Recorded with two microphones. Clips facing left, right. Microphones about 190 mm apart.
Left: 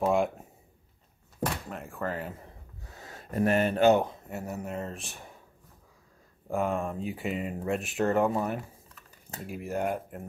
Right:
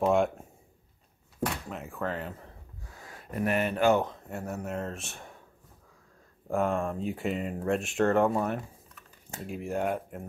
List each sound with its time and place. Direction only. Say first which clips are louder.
0.0 s speech: right 1 dB; centre (ahead or behind)
1.7 s speech: even; centre (ahead or behind)
2.4 s a sound: even; 25° left (ahead or behind)
4.0 s speech: even; 5° left (ahead or behind)
6.5 s speech: right 1 dB; centre (ahead or behind)